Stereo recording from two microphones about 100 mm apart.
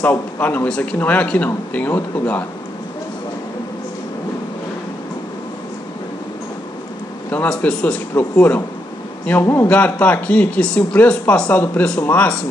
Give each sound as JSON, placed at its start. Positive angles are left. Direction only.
{"t": 0.0, "sound": "speech", "side_deg": 15}
{"t": 7.2, "sound": "speech", "side_deg": 15}
{"t": 9.7, "sound": "speech", "side_deg": 15}